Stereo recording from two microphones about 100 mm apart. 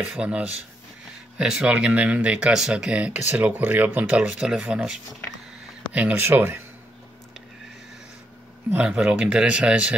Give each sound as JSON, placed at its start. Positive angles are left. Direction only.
{"t": 0.0, "sound": "speech", "side_deg": -10}
{"t": 8.7, "sound": "speech", "side_deg": -10}